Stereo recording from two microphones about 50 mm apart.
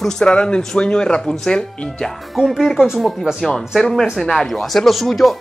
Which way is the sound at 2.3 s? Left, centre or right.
Centre.